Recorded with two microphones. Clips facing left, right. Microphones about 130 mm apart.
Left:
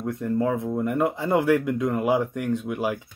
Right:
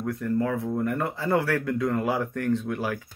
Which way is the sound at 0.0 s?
20° left (ahead or behind).